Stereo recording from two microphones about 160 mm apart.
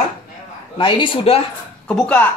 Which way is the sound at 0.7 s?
30° left (ahead or behind).